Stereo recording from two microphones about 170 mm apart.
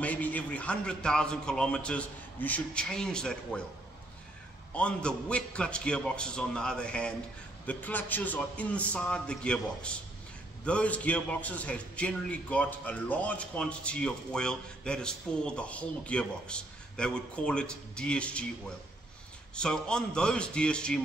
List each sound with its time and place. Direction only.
0.0 s a man's voice: 10° left (ahead or behind)
4.7 s a man's voice: 5° left (ahead or behind)
19.5 s a man's voice: 5° left (ahead or behind)